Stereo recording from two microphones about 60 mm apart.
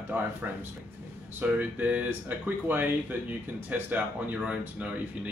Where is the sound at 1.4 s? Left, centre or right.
Right.